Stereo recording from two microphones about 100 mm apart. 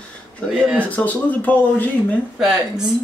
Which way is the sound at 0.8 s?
15° left (ahead or behind).